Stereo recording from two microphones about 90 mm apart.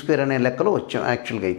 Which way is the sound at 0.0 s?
15° left (ahead or behind).